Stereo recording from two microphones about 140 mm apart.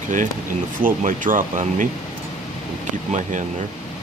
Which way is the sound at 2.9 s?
65° right (ahead or behind).